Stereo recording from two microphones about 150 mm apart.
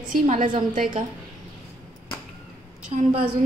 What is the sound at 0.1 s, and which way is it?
Speech, 55° right (ahead or behind).